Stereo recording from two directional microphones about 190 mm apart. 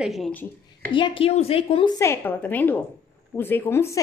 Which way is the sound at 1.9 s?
10° left (ahead or behind).